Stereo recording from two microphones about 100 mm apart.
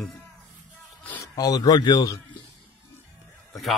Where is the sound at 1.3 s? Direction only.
40° left (ahead or behind).